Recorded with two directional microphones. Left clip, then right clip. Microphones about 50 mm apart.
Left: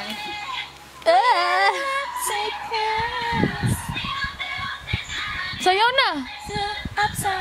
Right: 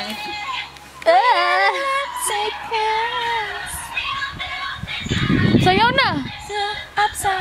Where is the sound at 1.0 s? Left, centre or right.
Centre.